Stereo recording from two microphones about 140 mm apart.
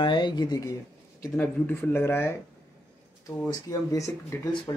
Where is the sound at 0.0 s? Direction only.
35° left (ahead or behind).